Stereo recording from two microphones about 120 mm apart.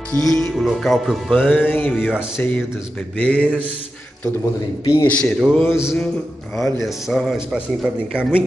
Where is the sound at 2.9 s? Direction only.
10° left (ahead or behind).